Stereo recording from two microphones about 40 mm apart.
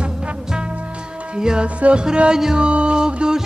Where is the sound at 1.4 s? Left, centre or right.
Centre.